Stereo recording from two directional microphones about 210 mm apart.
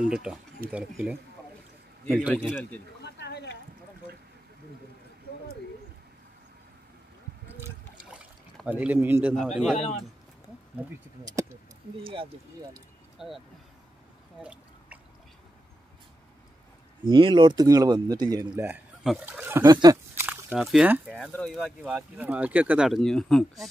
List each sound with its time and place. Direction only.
0.0 s speech: 5° right (ahead or behind)
2.3 s speech: 5° left (ahead or behind)
3.0 s a sound: 55° left (ahead or behind)
8.1 s a sound: 5° right (ahead or behind)
9.4 s speech: centre (ahead or behind)
12.0 s speech: 25° right (ahead or behind)
13.2 s speech: centre (ahead or behind)
14.4 s drip: 5° right (ahead or behind)
17.1 s speech: 25° right (ahead or behind)
19.0 s speech: 5° right (ahead or behind)